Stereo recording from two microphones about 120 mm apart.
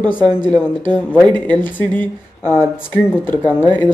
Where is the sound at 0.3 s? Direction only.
35° right (ahead or behind).